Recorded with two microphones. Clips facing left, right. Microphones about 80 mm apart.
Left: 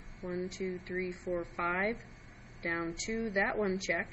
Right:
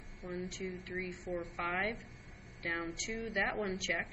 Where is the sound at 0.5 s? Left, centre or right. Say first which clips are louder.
Left 4 dB; centre.